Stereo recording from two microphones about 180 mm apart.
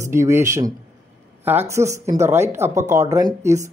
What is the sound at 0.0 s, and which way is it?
Speech, 15° right (ahead or behind).